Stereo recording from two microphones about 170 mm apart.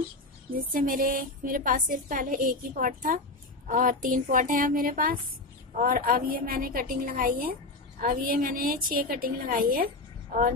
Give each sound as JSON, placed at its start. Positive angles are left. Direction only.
{"t": 0.5, "sound": "a woman's voice", "side_deg": -55}